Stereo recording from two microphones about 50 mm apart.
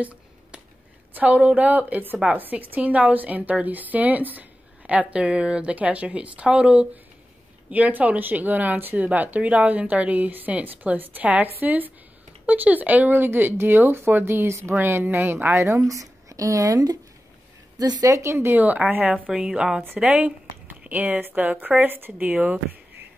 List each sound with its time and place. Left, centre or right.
1.1 s a woman's voice: right
7.7 s speech: right
14.8 s speech: right
15.5 s a woman's voice: right
18.0 s speech: right
18.5 s speech: right
19.3 s a woman's voice: centre
20.9 s speech: right